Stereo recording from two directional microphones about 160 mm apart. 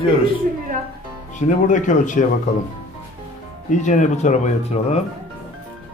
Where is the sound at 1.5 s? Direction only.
50° left (ahead or behind).